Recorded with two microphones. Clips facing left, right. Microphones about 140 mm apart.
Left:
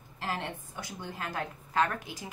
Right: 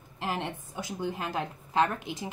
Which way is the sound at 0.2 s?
20° right (ahead or behind).